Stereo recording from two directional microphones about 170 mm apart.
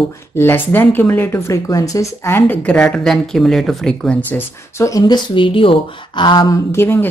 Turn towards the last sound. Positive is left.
turn(degrees=10)  # may be behind; listen again after turning